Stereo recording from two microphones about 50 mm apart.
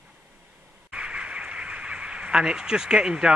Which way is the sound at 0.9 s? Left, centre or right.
Centre.